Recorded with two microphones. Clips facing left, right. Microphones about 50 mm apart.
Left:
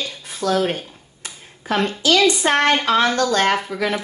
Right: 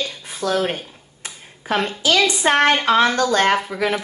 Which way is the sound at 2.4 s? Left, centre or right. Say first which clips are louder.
Right 1 dB; right.